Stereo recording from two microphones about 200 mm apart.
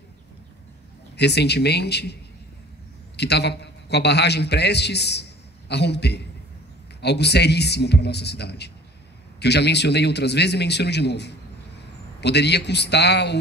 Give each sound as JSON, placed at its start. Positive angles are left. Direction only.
{"t": 1.1, "sound": "a man's voice", "side_deg": 55}
{"t": 3.2, "sound": "a man's voice", "side_deg": 55}